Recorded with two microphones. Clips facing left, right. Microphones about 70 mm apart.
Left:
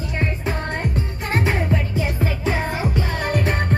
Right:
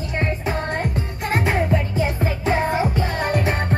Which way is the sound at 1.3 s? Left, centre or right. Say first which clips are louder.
Right 1 dB; centre.